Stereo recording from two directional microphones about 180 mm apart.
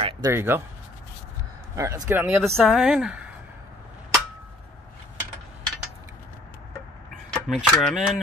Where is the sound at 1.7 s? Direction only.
15° right (ahead or behind).